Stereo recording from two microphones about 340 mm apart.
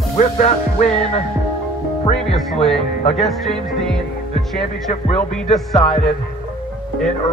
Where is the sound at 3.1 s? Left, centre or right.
Centre.